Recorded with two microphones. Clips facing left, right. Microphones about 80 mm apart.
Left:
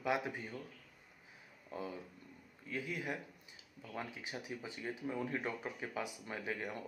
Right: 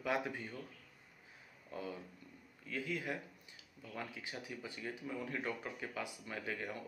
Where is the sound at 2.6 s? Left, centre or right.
Centre.